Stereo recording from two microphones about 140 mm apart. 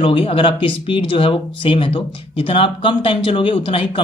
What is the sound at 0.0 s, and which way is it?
Speech, 40° left (ahead or behind).